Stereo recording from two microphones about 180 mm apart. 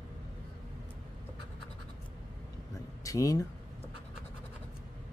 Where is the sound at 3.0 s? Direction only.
20° left (ahead or behind).